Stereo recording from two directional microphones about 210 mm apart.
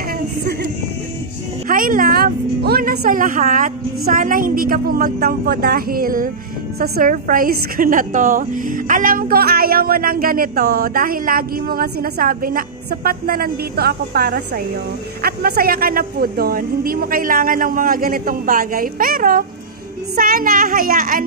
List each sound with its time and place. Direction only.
1.7 s a woman's voice: 40° right (ahead or behind)